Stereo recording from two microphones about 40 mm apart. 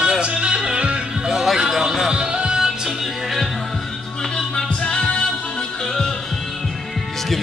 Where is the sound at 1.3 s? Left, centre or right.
Centre.